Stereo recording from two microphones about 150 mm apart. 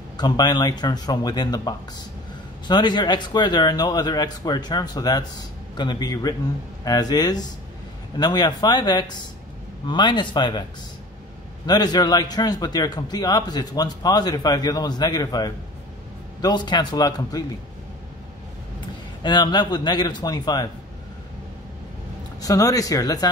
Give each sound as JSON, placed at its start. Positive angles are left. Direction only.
{"t": 0.2, "sound": "a man's voice", "side_deg": 25}
{"t": 11.6, "sound": "a man's voice", "side_deg": 25}
{"t": 19.2, "sound": "a man's voice", "side_deg": 30}
{"t": 22.4, "sound": "a man's voice", "side_deg": 25}